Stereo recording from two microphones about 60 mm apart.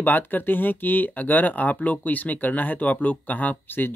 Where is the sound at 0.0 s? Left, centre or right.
Left.